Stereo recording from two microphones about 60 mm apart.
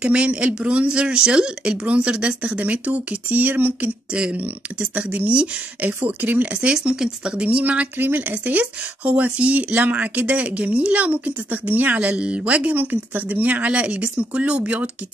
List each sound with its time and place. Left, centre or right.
0.0 s speech: right
4.1 s speech: centre